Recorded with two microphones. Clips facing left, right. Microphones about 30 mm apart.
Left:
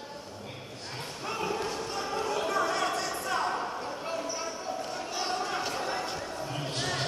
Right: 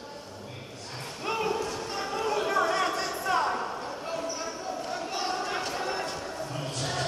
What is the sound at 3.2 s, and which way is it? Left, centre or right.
Basketball bounce, centre.